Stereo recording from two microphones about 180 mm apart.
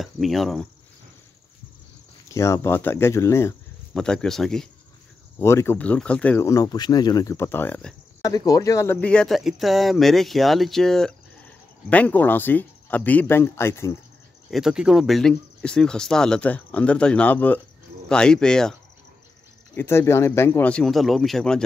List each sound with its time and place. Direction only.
0.0 s speech: centre (ahead or behind)
2.2 s speech: 15° left (ahead or behind)
3.9 s speech: 5° left (ahead or behind)
5.4 s speech: 15° left (ahead or behind)
14.5 s speech: 5° right (ahead or behind)